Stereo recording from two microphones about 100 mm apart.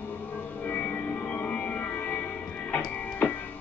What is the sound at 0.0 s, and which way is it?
Music, 20° left (ahead or behind).